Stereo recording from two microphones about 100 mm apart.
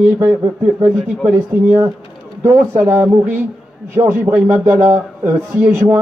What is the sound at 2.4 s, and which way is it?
Speech, 25° right (ahead or behind).